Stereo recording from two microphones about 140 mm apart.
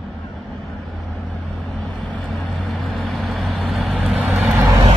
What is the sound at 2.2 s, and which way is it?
Vehicle, 10° left (ahead or behind).